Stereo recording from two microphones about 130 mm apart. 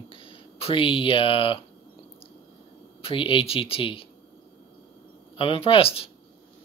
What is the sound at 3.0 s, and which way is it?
Speech, 40° left (ahead or behind).